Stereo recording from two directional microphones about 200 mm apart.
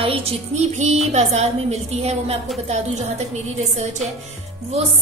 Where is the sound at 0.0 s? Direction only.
30° right (ahead or behind).